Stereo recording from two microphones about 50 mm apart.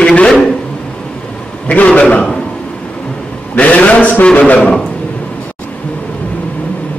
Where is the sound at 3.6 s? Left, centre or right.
Left.